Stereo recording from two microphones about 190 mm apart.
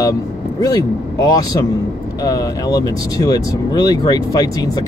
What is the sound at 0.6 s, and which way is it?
Speech, 20° left (ahead or behind).